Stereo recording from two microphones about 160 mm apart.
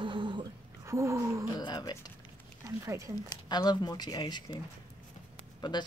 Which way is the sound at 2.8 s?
20° right (ahead or behind).